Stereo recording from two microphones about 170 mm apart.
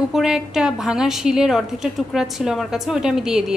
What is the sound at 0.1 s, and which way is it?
A woman's voice, 5° right (ahead or behind).